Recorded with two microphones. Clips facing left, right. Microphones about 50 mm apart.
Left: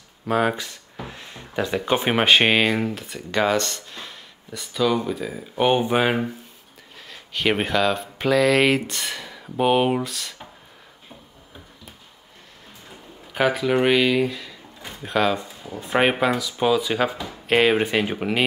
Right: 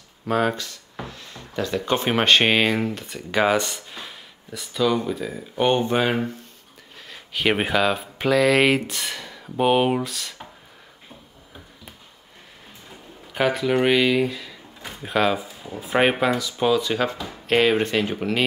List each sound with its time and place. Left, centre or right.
0.3 s speech: centre
1.0 s a sound: left
1.8 s speech: centre
7.1 s speech: centre
13.3 s speech: centre